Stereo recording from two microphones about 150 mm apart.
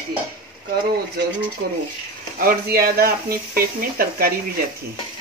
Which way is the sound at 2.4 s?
85° right.